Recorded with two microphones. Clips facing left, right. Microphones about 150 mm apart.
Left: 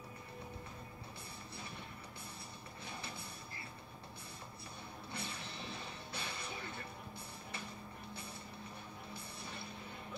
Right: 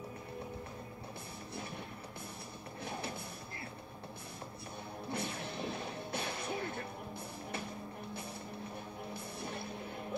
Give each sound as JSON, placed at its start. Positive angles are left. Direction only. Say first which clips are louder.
{"t": 2.8, "sound": "music", "louder": "right 8 dB", "side_deg": -50}
{"t": 5.1, "sound": "music", "louder": "right 8 dB", "side_deg": -50}